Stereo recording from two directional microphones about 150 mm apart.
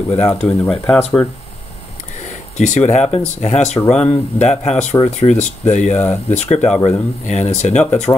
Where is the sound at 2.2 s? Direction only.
50° left (ahead or behind).